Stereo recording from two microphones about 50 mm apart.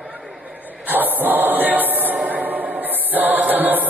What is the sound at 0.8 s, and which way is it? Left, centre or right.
Choir, right.